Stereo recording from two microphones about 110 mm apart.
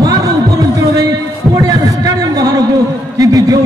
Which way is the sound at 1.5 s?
30° right (ahead or behind).